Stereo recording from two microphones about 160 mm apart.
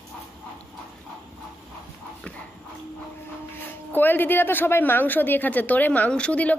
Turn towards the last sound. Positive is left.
turn(degrees=10)  # may be behind; listen again after turning